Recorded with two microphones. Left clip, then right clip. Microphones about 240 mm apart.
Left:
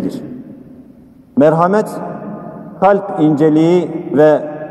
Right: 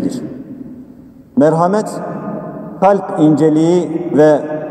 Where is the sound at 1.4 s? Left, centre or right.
Left.